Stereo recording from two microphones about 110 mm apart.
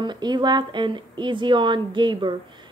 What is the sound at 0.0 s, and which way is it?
Speech, 40° right (ahead or behind).